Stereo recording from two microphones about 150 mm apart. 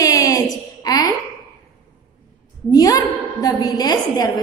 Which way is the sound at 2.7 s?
25° left (ahead or behind).